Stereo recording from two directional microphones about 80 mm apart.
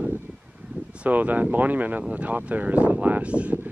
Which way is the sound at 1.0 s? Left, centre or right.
Right.